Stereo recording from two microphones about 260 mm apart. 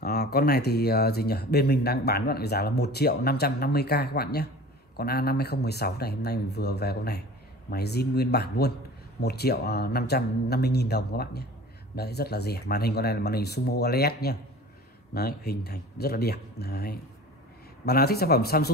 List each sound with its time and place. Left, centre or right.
0.0 s speech: left